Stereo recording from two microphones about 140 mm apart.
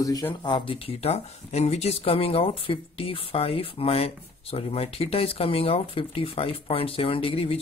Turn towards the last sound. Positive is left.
turn(degrees=40)  # may be behind; listen again after turning